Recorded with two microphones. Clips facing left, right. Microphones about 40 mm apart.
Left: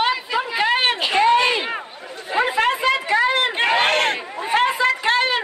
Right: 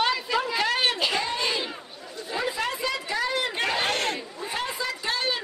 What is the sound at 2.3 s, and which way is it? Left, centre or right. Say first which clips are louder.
Chatter: left 10 dB; left.